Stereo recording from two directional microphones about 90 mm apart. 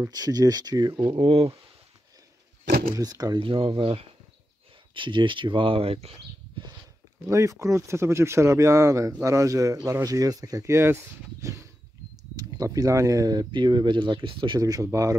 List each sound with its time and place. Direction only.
0.1 s speech: 45° right (ahead or behind)
1.1 s speech: 90° right
2.9 s speech: 45° right (ahead or behind)
3.3 s speech: 75° right (ahead or behind)
4.9 s speech: 65° right (ahead or behind); by 6.1 s 90° right
7.2 s speech: 35° right (ahead or behind); by 14.6 s 60° right (ahead or behind)
14.6 s speech: 40° right (ahead or behind)